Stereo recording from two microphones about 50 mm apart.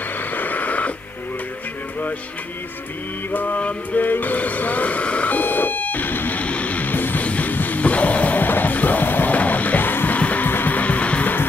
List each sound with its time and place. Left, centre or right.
0.2 s radio: left
3.3 s a sound: left
7.2 s music: left